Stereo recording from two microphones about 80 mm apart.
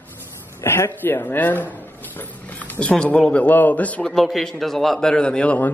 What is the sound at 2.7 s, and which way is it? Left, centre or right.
A man's voice, centre.